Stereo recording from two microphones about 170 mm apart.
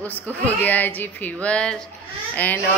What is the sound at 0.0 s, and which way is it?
A woman's voice, 10° left (ahead or behind).